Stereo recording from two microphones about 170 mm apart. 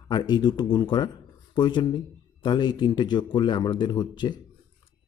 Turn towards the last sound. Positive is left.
turn(degrees=25)  # may be behind; listen again after turning